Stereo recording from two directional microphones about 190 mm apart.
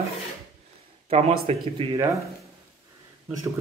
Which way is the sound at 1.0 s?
30° right (ahead or behind).